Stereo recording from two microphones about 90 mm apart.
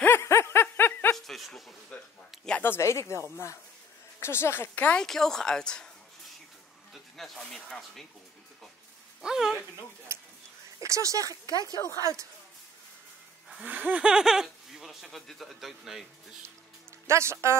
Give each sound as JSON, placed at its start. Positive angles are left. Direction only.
{"t": 0.0, "sound": "snicker", "side_deg": 30}
{"t": 1.1, "sound": "a sound", "side_deg": 5}
{"t": 2.6, "sound": "speech", "side_deg": 30}
{"t": 4.2, "sound": "a woman's voice", "side_deg": 30}
{"t": 5.0, "sound": "speech", "side_deg": 5}
{"t": 6.9, "sound": "speech", "side_deg": 0}
{"t": 9.2, "sound": "speech", "side_deg": -5}
{"t": 10.1, "sound": "a sound", "side_deg": -30}
{"t": 10.8, "sound": "speech", "side_deg": -35}
{"t": 13.7, "sound": "speech", "side_deg": -15}
{"t": 17.1, "sound": "speech", "side_deg": -30}